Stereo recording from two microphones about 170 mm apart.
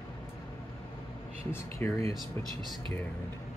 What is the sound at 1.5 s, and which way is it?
Speech, 15° left (ahead or behind).